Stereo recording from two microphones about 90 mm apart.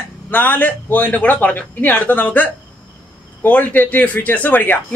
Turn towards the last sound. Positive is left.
turn(degrees=20)  # may be behind; listen again after turning